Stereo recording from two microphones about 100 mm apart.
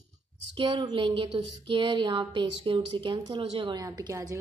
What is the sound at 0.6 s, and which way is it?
Speech, 45° right (ahead or behind).